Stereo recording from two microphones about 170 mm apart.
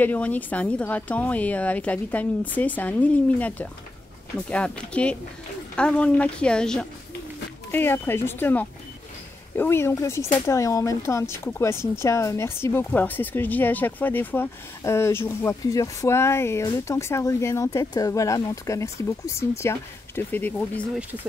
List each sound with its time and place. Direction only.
0.0 s speech: 10° left (ahead or behind)